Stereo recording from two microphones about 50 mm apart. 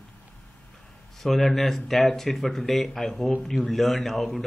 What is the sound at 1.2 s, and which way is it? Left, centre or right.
Speech, centre.